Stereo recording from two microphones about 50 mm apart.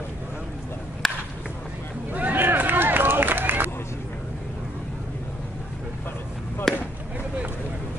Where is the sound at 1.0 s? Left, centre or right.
Centre.